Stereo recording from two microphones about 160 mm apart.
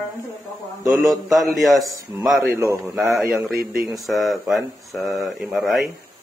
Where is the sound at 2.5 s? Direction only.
20° right (ahead or behind).